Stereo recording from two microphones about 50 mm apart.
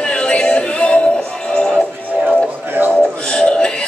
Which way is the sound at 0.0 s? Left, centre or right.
Left.